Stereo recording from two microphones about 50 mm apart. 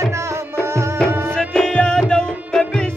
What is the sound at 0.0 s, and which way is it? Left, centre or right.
Tabla, right.